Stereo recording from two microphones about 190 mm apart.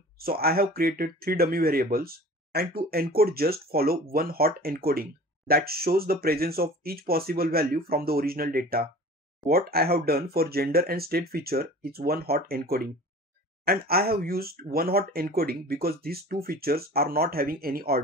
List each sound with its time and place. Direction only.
0.2 s speech: 55° right (ahead or behind)